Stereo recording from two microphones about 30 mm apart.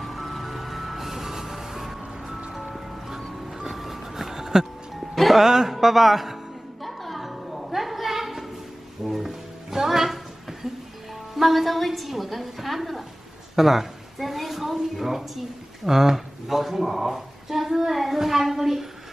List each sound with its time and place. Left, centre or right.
0.0 s music: centre
3.5 s music: centre
5.1 s music: centre
5.4 s speech: centre
6.8 s a sound: centre
9.0 s music: centre
11.3 s a woman's voice: centre
13.6 s a sound: centre
15.0 s speech: centre